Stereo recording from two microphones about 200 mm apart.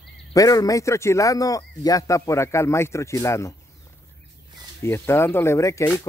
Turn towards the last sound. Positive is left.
turn(degrees=15)  # may be behind; listen again after turning